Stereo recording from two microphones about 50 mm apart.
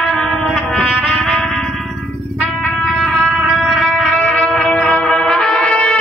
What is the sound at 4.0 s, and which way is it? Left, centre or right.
Music, centre.